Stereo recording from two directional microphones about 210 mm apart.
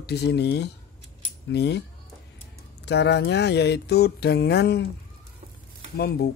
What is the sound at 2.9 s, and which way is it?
Speech, 55° left (ahead or behind).